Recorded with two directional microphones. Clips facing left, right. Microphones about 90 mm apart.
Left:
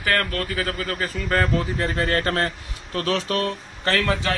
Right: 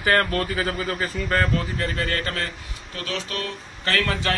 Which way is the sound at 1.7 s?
25° left (ahead or behind).